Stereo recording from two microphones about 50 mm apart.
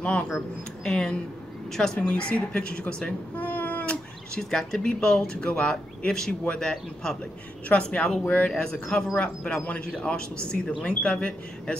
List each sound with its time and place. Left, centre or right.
0.0 s speech: left; by 2.0 s centre
2.0 s speech: left
3.3 s a sound: left
4.4 s speech: centre
7.6 s speech: left